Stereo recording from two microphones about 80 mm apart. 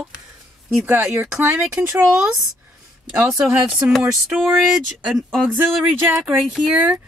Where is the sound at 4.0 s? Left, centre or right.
Centre.